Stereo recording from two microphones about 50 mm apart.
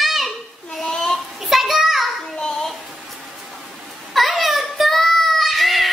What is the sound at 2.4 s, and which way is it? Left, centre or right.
Child singing, centre.